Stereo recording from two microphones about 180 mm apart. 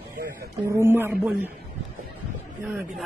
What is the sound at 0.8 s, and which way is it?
Speech, 15° right (ahead or behind).